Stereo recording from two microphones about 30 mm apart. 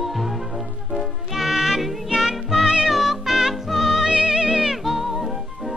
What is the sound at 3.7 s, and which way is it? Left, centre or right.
Music, centre.